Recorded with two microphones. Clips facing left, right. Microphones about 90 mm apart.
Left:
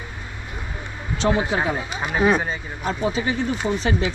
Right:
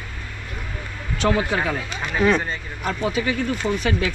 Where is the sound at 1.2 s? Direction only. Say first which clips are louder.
Even; 25° left (ahead or behind).